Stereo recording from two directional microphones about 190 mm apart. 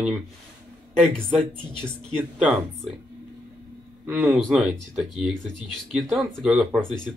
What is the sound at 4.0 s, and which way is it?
Speech, 10° right (ahead or behind).